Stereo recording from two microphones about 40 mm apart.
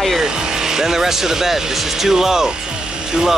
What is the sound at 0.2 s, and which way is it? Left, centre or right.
Speech, centre.